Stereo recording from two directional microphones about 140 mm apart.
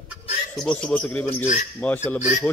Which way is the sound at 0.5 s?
5° left (ahead or behind).